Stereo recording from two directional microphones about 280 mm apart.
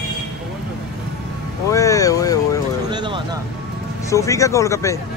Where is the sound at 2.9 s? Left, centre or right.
Centre.